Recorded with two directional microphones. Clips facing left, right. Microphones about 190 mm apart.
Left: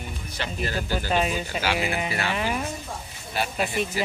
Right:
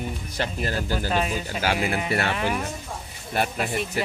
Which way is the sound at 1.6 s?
45° right (ahead or behind).